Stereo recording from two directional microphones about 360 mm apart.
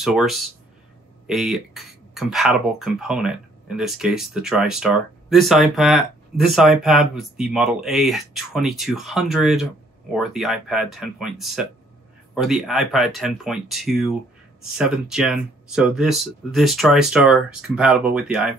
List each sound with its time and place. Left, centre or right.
0.0 s speech: centre